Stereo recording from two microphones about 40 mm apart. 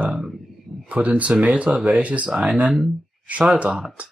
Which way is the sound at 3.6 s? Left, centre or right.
Right.